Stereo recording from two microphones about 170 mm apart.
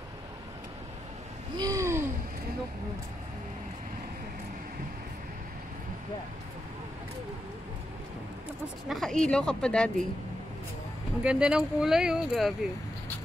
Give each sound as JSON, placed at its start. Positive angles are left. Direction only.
{"t": 1.6, "sound": "a sound", "side_deg": -20}
{"t": 8.8, "sound": "speech", "side_deg": 0}
{"t": 11.2, "sound": "speech", "side_deg": -5}